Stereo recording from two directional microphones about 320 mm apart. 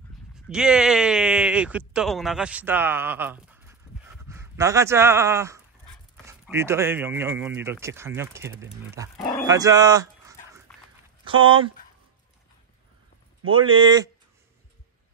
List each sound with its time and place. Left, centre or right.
0.5 s speech: centre
9.1 s speech: centre
9.5 s dog: centre
11.2 s speech: centre
13.5 s speech: centre